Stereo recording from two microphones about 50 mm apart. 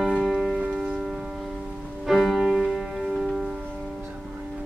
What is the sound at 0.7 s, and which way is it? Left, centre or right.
Music, centre.